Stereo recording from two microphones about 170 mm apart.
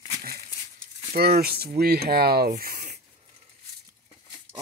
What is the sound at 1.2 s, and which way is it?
Speech, 65° right (ahead or behind).